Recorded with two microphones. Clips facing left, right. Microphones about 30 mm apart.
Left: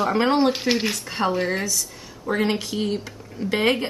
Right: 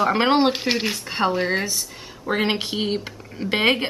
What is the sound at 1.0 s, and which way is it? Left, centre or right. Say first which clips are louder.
Speech: right 4 dB; right.